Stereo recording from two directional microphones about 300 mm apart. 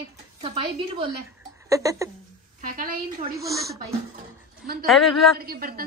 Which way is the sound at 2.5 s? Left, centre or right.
Right.